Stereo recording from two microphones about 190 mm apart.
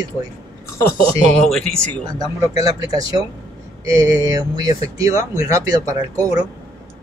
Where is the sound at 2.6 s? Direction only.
20° right (ahead or behind).